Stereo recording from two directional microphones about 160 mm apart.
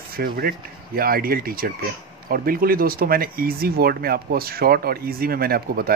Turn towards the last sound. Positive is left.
turn(degrees=-70)  # may be behind; listen again after turning